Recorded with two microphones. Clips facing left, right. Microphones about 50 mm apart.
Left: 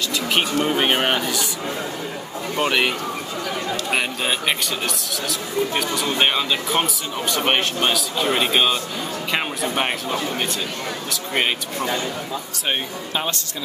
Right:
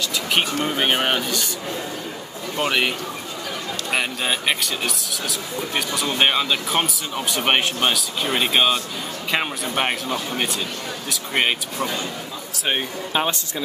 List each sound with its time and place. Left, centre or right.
0.7 s speech: centre
2.5 s speech: centre
3.9 s speech: centre
13.1 s speech: centre